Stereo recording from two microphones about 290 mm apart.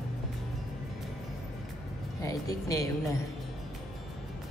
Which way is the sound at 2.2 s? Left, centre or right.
Centre.